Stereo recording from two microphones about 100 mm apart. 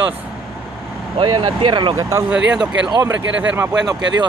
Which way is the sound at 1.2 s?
60° right (ahead or behind).